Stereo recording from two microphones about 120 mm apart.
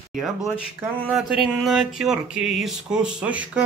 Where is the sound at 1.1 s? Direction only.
Centre (ahead or behind).